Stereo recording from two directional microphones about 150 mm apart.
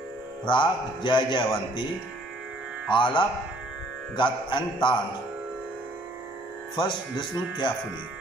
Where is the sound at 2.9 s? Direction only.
35° left (ahead or behind).